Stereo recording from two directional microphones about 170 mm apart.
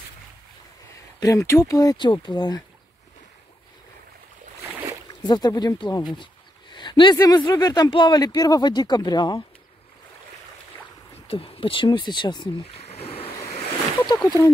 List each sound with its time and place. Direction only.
1.2 s speech: 20° left (ahead or behind)
5.2 s speech: 25° left (ahead or behind)
11.2 s speech: 35° left (ahead or behind)
12.8 s ocean: 35° left (ahead or behind)
14.0 s speech: 25° left (ahead or behind)